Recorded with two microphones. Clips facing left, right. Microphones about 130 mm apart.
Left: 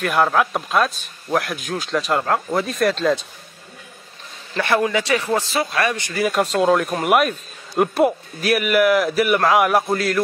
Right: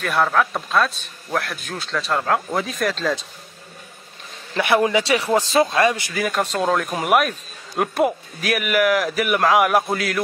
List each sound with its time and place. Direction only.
0.0 s a man's voice: 10° left (ahead or behind)
4.6 s a man's voice: 15° right (ahead or behind)
5.5 s speech: 25° right (ahead or behind)
6.1 s speech: centre (ahead or behind)